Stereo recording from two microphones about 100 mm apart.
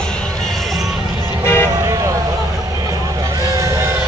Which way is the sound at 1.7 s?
30° right (ahead or behind).